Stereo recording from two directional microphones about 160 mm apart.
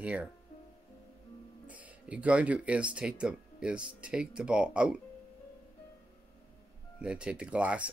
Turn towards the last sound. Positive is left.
turn(degrees=-10)  # may be behind; listen again after turning